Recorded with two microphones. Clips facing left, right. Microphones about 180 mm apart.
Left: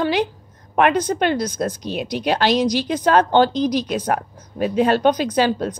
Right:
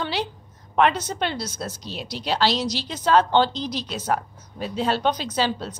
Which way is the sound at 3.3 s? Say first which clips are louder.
Left 5 dB; 50° left (ahead or behind).